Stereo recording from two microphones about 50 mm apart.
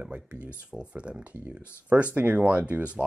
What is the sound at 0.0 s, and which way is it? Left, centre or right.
Speech, right.